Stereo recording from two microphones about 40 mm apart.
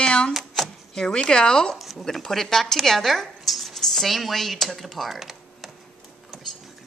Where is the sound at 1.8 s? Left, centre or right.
Centre.